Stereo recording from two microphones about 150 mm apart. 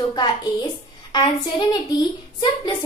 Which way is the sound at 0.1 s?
30° left (ahead or behind).